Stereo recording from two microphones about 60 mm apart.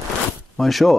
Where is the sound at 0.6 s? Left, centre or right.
Centre.